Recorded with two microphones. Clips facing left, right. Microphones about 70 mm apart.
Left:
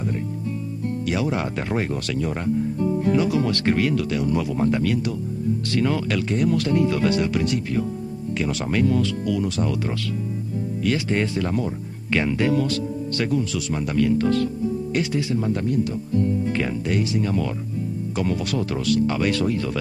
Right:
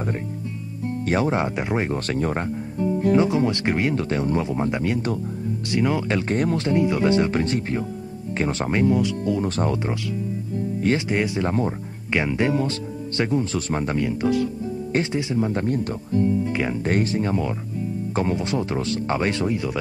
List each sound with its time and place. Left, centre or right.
1.0 s speech: right; by 1.9 s centre
1.9 s speech: right
3.1 s speech: right
6.3 s speech: right
6.6 s speech: right
9.3 s speech: right
10.8 s speech: right
11.1 s speech: centre; by 13.9 s right
13.9 s speech: right
14.9 s speech: right
15.6 s speech: right; by 19.8 s centre